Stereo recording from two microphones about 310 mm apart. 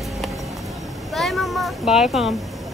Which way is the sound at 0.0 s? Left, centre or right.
Centre.